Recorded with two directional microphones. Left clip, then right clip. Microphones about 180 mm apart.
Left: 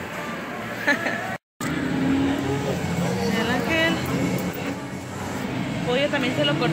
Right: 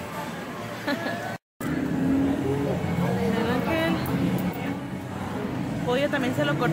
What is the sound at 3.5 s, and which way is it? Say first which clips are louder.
Vehicle: left 6 dB; 5° right (ahead or behind).